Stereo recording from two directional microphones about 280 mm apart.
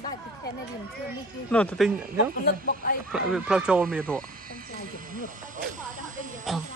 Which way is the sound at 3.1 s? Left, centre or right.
Centre.